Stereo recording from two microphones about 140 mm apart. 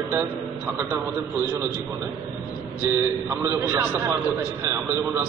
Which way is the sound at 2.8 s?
15° right (ahead or behind).